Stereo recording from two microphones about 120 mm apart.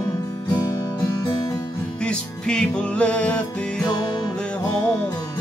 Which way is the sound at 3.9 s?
35° left (ahead or behind).